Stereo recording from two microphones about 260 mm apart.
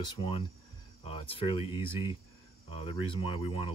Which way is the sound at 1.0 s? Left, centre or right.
Left.